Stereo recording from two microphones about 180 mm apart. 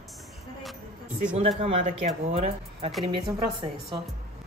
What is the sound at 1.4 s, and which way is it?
Speech, 35° right (ahead or behind).